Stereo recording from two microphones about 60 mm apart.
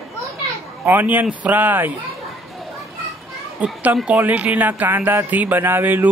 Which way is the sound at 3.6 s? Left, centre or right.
Right.